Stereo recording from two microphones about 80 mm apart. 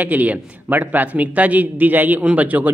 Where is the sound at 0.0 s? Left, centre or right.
Right.